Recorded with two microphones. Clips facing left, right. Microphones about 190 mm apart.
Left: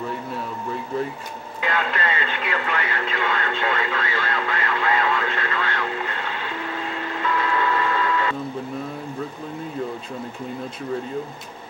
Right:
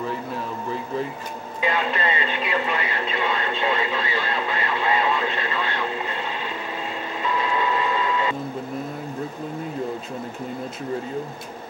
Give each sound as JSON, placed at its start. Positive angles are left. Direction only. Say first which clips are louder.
{"t": 1.6, "sound": "radio", "louder": "right 1 dB", "side_deg": -20}
{"t": 7.2, "sound": "radio", "louder": "left 1 dB", "side_deg": -20}